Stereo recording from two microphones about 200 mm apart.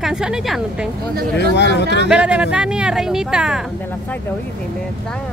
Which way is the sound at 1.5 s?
60° left (ahead or behind).